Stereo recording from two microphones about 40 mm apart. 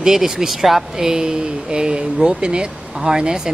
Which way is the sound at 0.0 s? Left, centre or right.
Centre.